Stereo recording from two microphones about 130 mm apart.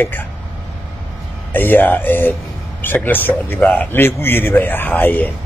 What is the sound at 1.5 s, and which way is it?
A man's voice, 15° left (ahead or behind).